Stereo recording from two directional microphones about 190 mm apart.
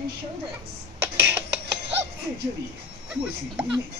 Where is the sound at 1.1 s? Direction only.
65° right (ahead or behind).